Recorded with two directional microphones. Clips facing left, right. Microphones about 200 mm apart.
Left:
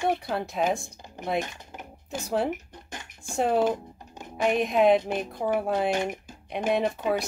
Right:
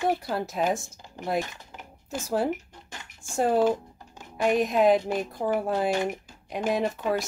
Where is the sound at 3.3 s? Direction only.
Centre (ahead or behind).